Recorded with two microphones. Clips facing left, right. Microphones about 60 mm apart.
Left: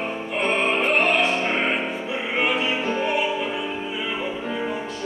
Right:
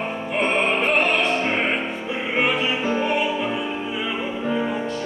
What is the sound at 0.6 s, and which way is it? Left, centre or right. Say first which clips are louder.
Opera: left 1 dB; centre.